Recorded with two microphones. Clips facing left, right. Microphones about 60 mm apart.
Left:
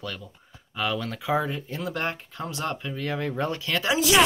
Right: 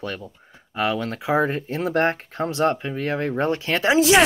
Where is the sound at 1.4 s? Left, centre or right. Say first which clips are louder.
Right 7 dB; right.